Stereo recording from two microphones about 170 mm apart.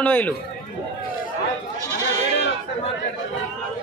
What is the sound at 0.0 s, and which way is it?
Speech, 10° left (ahead or behind).